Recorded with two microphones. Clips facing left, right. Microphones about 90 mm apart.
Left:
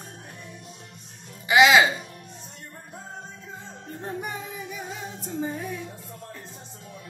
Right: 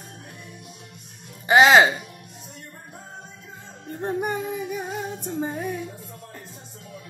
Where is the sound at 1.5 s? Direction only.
40° right (ahead or behind).